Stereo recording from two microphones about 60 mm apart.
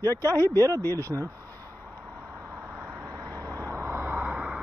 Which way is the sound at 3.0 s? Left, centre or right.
Right.